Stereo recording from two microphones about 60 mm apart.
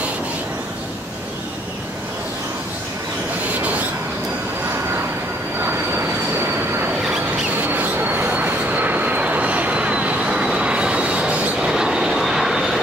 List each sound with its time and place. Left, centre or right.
5.7 s train: right
7.6 s vehicle: right; by 12.8 s centre